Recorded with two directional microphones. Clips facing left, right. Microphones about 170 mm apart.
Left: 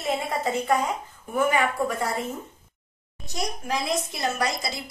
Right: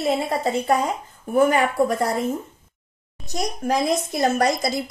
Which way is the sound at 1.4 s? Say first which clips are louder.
Right 5 dB; 40° right (ahead or behind).